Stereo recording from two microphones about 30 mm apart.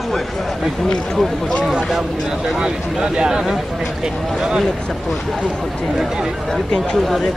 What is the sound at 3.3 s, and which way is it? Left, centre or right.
Speech, centre.